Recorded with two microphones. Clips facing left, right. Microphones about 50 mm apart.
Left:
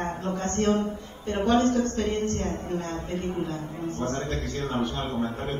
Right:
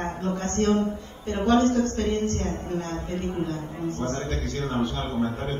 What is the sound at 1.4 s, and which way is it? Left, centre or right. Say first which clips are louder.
A man's voice: right 2 dB; right.